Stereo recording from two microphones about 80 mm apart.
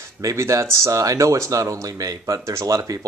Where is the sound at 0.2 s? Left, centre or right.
Right.